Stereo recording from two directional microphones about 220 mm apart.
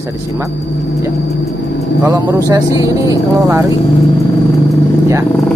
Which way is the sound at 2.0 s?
10° right (ahead or behind).